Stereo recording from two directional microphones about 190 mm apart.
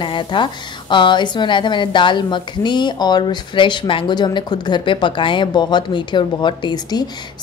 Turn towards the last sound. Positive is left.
turn(degrees=20)  # may be behind; listen again after turning